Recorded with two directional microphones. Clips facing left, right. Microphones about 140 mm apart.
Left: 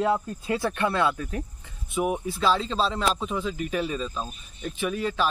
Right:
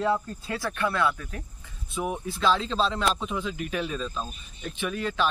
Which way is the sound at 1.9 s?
10° left (ahead or behind).